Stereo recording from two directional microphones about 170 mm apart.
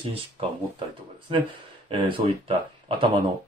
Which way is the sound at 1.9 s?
30° right (ahead or behind).